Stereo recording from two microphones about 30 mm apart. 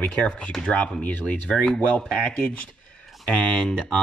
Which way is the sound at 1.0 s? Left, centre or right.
Left.